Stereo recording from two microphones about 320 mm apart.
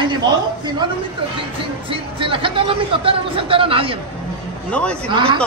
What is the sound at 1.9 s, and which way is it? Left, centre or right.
Speech, centre.